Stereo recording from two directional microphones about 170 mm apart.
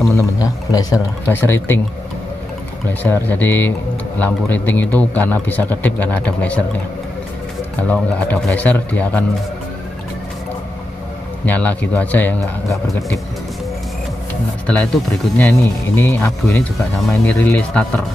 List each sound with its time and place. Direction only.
0.1 s speech: 20° left (ahead or behind)
2.9 s a man's voice: 10° left (ahead or behind)
7.9 s a man's voice: 10° left (ahead or behind)
11.4 s a man's voice: 10° left (ahead or behind)
14.7 s a man's voice: 10° left (ahead or behind)